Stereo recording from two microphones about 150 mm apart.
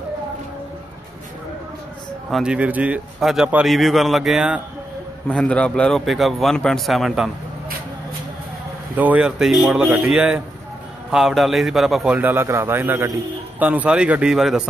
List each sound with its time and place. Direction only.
2.3 s a man's voice: 5° right (ahead or behind)
5.3 s a man's voice: 5° left (ahead or behind)
8.9 s a man's voice: 10° right (ahead or behind)